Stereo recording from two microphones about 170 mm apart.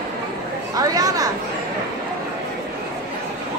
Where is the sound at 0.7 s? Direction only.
20° right (ahead or behind).